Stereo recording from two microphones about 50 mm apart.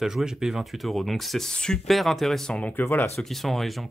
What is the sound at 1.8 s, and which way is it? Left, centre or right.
Speech, centre.